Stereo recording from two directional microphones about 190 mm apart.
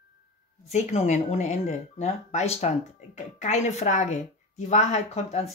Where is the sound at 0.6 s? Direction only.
35° left (ahead or behind).